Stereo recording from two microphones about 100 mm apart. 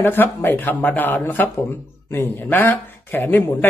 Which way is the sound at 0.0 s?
20° left (ahead or behind).